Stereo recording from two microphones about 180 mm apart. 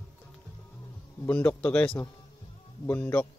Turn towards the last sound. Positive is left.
turn(degrees=10)  # may be behind; listen again after turning